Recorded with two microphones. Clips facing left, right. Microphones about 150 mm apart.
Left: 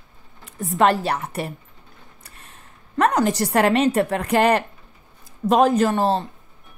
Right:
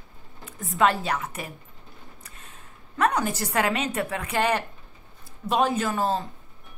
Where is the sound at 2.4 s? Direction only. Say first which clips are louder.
Even; 35° left (ahead or behind).